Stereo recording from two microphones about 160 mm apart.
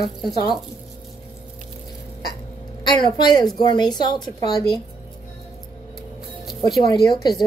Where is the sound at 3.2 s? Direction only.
25° left (ahead or behind).